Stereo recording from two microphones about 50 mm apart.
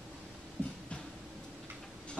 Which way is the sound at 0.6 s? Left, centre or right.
Left.